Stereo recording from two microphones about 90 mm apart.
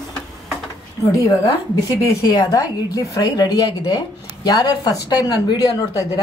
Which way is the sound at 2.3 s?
45° left (ahead or behind).